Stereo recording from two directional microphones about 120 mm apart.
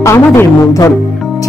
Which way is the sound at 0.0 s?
25° left (ahead or behind).